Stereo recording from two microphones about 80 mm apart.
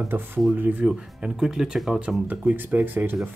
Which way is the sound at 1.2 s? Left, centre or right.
Centre.